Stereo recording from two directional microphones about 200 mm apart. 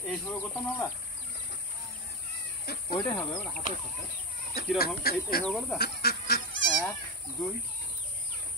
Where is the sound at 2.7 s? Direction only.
55° left (ahead or behind).